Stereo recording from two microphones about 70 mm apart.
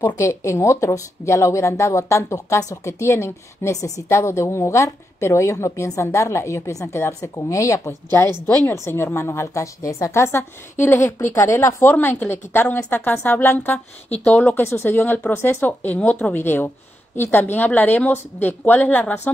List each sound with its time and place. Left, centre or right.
0.0 s speech: left
8.5 s a woman's voice: left
11.9 s a woman's voice: left